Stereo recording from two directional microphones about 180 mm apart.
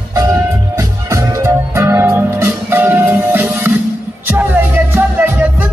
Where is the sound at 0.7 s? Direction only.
15° right (ahead or behind).